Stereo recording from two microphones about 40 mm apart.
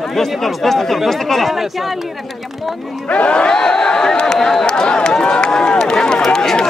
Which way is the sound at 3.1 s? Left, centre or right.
Left.